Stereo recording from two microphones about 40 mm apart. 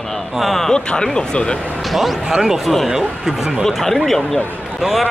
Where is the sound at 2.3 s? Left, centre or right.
Centre.